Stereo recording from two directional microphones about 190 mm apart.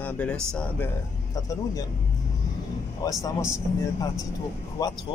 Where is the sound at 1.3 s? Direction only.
20° left (ahead or behind).